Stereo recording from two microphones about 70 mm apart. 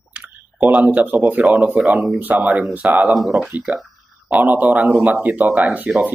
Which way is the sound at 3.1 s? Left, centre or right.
Centre.